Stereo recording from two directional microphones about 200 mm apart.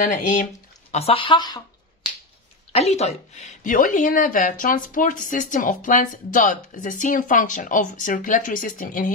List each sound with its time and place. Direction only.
0.0 s a woman's voice: 40° left (ahead or behind)
0.9 s a woman's voice: 30° left (ahead or behind)
2.7 s a woman's voice: 30° left (ahead or behind)